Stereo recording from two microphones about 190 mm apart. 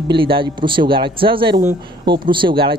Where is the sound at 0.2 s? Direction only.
25° right (ahead or behind).